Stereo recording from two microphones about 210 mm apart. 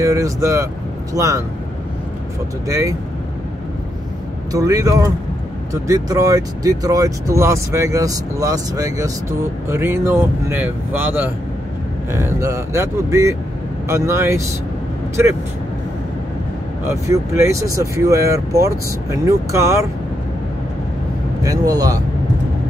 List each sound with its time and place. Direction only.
0.0 s speech: 15° right (ahead or behind)
2.7 s speech: 15° right (ahead or behind)
4.5 s speech: 15° right (ahead or behind)
16.8 s speech: 15° right (ahead or behind)
21.4 s speech: 15° right (ahead or behind)